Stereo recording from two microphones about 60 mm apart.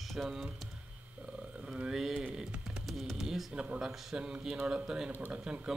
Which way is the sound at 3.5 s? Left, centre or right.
Centre.